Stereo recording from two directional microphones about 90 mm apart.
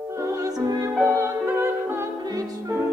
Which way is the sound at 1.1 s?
30° right (ahead or behind).